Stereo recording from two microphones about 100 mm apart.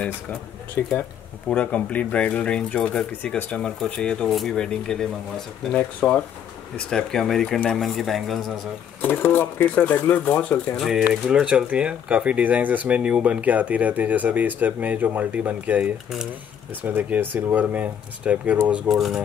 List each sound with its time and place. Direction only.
0.8 s speech: 15° left (ahead or behind); by 8.5 s centre (ahead or behind)
9.0 s speech: 20° left (ahead or behind)
10.8 s speech: 5° right (ahead or behind)
18.9 s speech: centre (ahead or behind)